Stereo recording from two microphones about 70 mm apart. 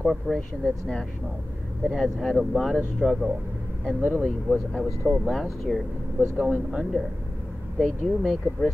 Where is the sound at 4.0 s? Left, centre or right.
Left.